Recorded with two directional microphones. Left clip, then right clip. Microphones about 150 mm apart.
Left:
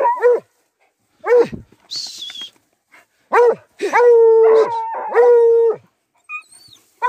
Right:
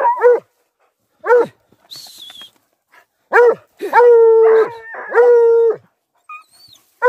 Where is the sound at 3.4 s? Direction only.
15° right (ahead or behind).